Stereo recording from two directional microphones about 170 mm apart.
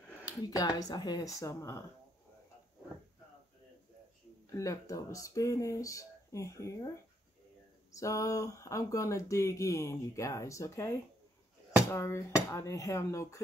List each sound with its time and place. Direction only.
0.2 s speech: 20° left (ahead or behind)
4.6 s speech: 20° left (ahead or behind)
8.0 s speech: 20° left (ahead or behind)
11.9 s speech: 15° left (ahead or behind)